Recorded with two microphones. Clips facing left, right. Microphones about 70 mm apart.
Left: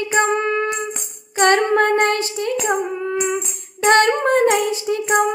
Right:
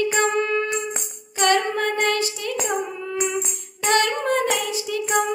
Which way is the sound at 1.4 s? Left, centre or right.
Left.